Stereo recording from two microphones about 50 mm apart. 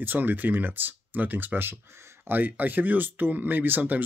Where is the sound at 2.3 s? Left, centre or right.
Right.